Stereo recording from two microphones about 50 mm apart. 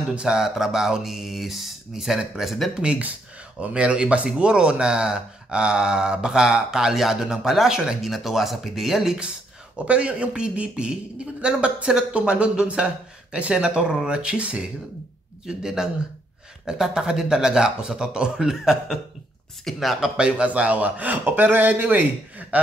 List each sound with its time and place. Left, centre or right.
0.1 s speech: centre
2.7 s speech: centre
9.8 s speech: right
18.6 s speech: centre
20.0 s a man's voice: centre; by 22.0 s right
22.5 s a sound: right